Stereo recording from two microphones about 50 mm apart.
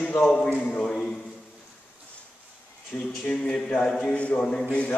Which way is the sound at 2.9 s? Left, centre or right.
Left.